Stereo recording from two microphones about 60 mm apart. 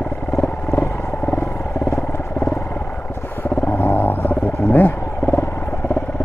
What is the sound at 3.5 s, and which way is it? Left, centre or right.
Wild animals, left.